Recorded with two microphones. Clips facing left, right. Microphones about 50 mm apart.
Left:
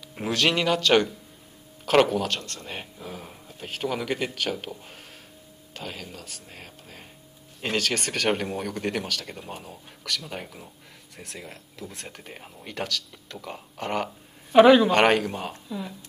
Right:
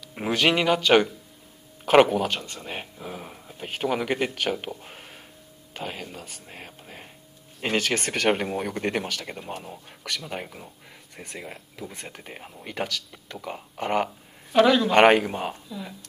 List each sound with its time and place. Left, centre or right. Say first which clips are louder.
0.1 s speech: right 2 dB; centre
14.5 s a man's voice: left 4 dB; centre
14.9 s speech: right 3 dB; centre